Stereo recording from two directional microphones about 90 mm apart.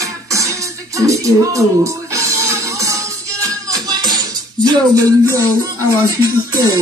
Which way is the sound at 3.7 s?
45° right (ahead or behind).